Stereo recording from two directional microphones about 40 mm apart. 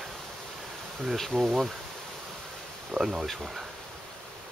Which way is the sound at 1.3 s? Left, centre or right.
Centre.